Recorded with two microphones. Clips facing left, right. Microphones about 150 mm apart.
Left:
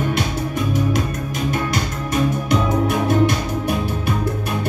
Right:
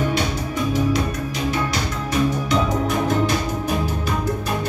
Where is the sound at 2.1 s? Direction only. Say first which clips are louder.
Left 1 dB; 55° left (ahead or behind).